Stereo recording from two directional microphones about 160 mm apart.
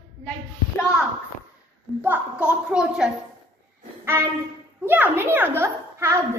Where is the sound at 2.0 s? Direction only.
10° right (ahead or behind).